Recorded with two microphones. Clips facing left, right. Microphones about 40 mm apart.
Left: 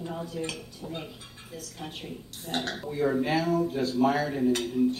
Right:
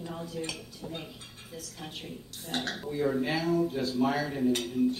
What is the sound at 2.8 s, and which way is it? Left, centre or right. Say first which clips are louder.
A man's voice: left 2 dB; centre.